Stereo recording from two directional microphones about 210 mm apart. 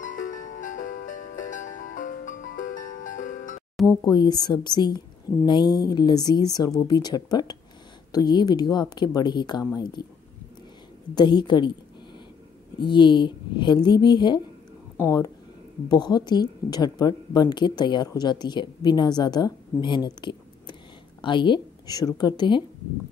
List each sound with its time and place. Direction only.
0.0 s music: 40° left (ahead or behind)
4.0 s a woman's voice: 20° left (ahead or behind)
11.1 s a woman's voice: 20° left (ahead or behind)
12.7 s a woman's voice: 20° left (ahead or behind)